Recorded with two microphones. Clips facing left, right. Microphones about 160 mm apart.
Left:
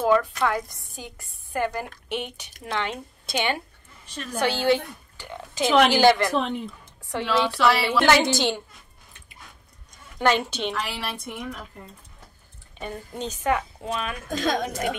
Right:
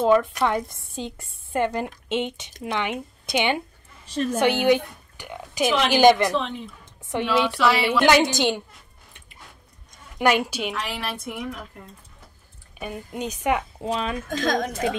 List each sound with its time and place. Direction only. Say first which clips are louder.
0.0 s a woman's voice: right 2 dB; 20° right (ahead or behind)
4.0 s a woman's voice: right 5 dB; 30° right (ahead or behind); by 7.5 s 15° right (ahead or behind)
7.5 s a woman's voice: even; centre (ahead or behind)
7.8 s a woman's voice: right 2 dB; 15° right (ahead or behind)
10.1 s a woman's voice: right 1 dB; 10° right (ahead or behind)
13.8 s a woman's voice: right 4 dB; 30° right (ahead or behind)
14.3 s a woman's voice: even; 5° left (ahead or behind)